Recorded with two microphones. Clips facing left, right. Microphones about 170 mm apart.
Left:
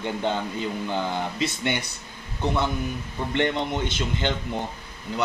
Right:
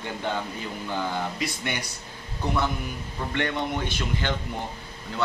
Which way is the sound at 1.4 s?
25° left (ahead or behind).